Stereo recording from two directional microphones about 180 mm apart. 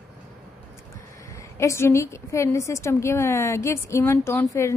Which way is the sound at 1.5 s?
15° left (ahead or behind).